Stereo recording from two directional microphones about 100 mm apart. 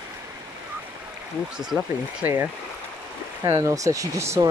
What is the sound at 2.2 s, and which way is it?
Speech, 20° right (ahead or behind).